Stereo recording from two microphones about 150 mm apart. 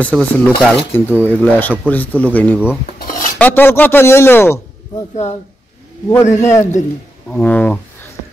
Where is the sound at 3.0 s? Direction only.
70° left (ahead or behind).